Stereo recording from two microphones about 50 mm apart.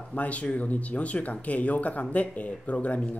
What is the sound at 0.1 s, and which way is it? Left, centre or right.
Speech, left.